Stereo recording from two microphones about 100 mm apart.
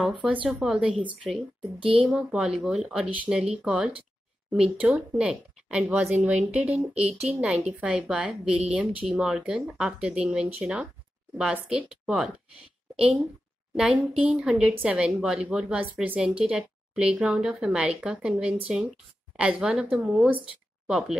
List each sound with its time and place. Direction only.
0.2 s speech: 15° right (ahead or behind)
0.5 s speech: 5° right (ahead or behind)
1.8 s speech: 65° right (ahead or behind)
2.0 s a woman's voice: 10° right (ahead or behind)
19.3 s speech: 10° right (ahead or behind)